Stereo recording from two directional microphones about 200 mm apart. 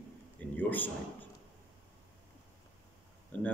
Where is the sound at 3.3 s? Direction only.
10° left (ahead or behind).